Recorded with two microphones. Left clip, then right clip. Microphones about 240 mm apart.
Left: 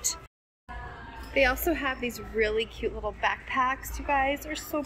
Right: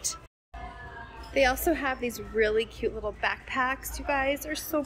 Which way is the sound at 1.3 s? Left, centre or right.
Centre.